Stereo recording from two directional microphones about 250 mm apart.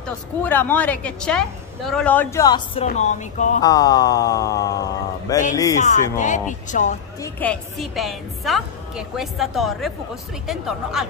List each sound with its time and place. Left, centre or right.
0.4 s a woman's voice: centre; by 3.5 s left
3.6 s speech: centre
5.8 s speech: left
7.3 s a woman's voice: centre